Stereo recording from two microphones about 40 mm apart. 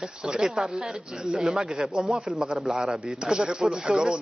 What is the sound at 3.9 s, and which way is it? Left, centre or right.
Speech, centre.